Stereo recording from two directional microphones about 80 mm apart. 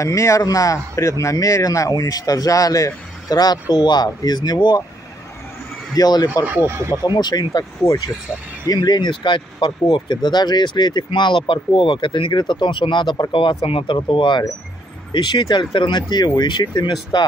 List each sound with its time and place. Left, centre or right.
0.0 s speech: left
3.7 s speech: left
5.9 s speech: left
6.4 s speech: right
6.8 s speech: right
7.2 s speech: left
8.8 s speech: left
15.1 s speech: left
15.5 s speech: left
16.0 s speech: left